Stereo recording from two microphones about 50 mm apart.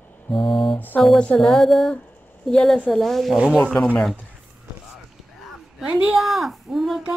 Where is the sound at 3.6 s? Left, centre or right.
Left.